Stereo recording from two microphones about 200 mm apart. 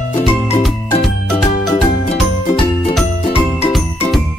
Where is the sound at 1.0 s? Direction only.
Centre (ahead or behind).